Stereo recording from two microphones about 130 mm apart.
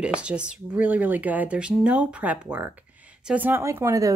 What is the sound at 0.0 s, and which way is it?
Speech, 10° right (ahead or behind).